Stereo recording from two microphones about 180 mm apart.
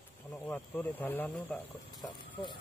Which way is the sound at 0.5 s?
10° left (ahead or behind).